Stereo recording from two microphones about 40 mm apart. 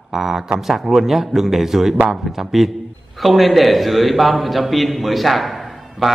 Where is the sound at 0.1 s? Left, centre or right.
Centre.